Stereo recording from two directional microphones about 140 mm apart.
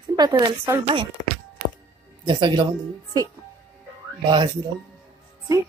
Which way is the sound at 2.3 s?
30° right (ahead or behind).